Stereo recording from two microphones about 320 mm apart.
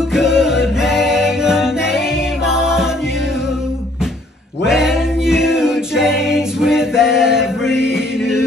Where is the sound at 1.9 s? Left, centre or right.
Centre.